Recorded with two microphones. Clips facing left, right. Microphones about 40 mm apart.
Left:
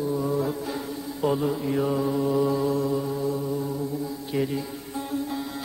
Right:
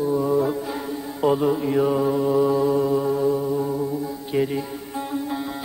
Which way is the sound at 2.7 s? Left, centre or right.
Right.